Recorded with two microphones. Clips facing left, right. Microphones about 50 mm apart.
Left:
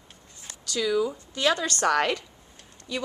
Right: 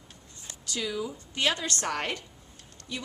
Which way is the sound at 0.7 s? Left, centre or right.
Left.